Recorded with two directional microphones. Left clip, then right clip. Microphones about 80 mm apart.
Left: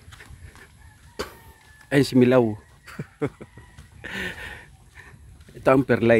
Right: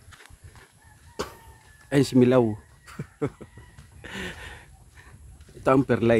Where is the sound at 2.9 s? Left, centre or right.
Centre.